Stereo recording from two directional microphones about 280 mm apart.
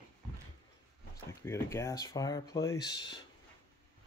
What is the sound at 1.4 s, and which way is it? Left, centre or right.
Speech, centre.